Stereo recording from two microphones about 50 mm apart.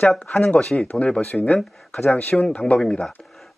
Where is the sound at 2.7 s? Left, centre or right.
Centre.